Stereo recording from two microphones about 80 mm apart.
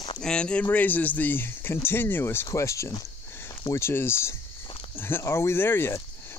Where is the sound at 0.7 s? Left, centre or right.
Left.